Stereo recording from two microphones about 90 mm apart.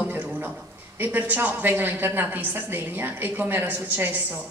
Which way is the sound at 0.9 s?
20° right (ahead or behind).